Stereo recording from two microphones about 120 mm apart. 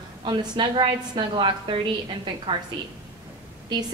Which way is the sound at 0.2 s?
40° right (ahead or behind).